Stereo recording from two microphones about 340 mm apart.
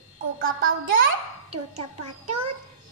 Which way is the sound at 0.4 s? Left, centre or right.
Right.